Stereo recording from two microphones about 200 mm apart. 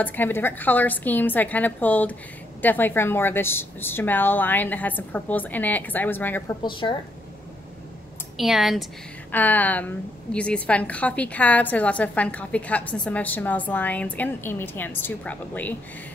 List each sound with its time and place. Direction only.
0.0 s a woman's voice: 10° left (ahead or behind)
6.6 s a woman's voice: 25° left (ahead or behind)
8.4 s a woman's voice: centre (ahead or behind)